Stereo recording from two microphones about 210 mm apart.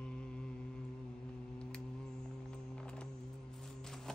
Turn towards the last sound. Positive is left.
turn(degrees=0)  # may be behind; listen again after turning